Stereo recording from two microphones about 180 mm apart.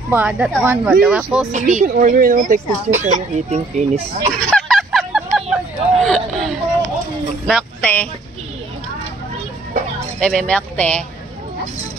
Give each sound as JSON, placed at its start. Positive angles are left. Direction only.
{"t": 0.1, "sound": "speech", "side_deg": -5}
{"t": 1.5, "sound": "speech", "side_deg": -45}
{"t": 4.4, "sound": "hubbub", "side_deg": 5}
{"t": 7.4, "sound": "a sound", "side_deg": 5}
{"t": 10.2, "sound": "speech", "side_deg": 5}